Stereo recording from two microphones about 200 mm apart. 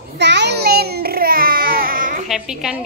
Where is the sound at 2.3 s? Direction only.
5° right (ahead or behind).